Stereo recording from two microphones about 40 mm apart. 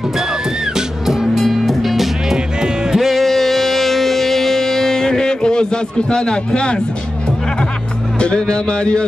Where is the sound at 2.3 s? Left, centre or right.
Centre.